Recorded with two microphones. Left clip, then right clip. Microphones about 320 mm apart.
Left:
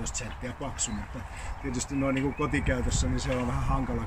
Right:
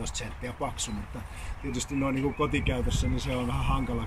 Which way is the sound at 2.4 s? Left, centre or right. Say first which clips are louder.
Even; centre.